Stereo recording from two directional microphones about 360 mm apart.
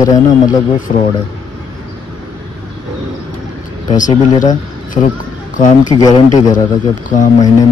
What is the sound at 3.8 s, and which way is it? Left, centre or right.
Speech, left.